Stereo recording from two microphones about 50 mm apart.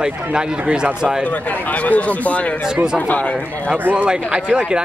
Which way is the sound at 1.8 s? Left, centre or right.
Left.